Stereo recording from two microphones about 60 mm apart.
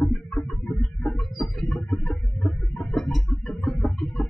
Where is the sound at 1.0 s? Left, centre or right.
Centre.